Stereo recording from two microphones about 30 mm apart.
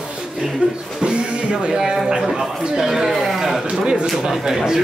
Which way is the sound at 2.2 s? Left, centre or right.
Centre.